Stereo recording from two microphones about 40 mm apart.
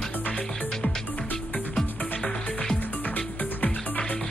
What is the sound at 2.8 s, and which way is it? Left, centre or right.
Music, left.